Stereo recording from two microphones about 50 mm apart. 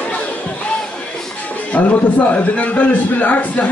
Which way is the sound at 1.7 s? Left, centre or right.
Left.